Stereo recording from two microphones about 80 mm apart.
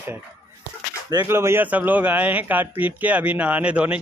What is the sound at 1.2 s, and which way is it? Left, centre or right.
A man's voice, right.